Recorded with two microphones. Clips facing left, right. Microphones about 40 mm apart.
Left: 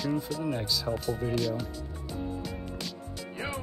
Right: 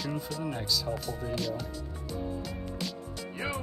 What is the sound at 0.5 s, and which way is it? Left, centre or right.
Speech, centre.